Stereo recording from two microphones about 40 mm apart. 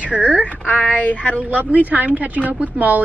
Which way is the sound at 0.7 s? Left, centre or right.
Left.